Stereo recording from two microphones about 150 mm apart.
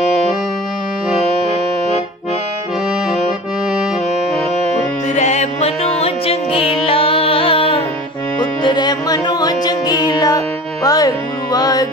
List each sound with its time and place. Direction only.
5.1 s music: 50° left (ahead or behind); by 11.9 s 25° left (ahead or behind)